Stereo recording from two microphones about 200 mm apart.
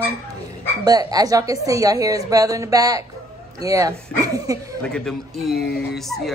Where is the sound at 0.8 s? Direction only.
20° right (ahead or behind).